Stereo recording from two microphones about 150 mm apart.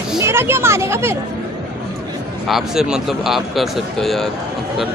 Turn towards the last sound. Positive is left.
turn(degrees=0)  # may be behind; listen again after turning